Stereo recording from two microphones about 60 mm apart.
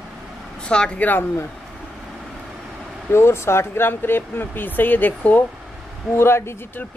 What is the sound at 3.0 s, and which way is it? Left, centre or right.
Speech, left.